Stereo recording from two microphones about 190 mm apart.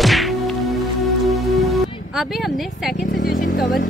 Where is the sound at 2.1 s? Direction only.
Centre (ahead or behind).